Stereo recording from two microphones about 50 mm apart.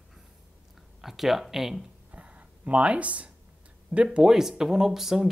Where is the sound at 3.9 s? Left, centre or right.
Right.